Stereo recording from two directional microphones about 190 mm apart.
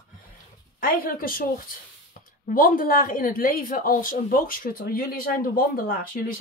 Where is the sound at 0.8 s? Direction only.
50° left (ahead or behind).